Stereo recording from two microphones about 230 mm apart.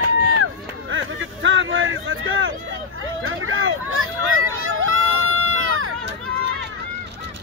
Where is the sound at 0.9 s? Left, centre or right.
Right.